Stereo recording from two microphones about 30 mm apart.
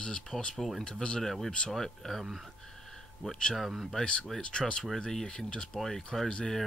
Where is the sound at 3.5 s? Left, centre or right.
Centre.